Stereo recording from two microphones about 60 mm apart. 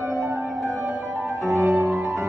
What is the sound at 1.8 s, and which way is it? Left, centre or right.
Music, right.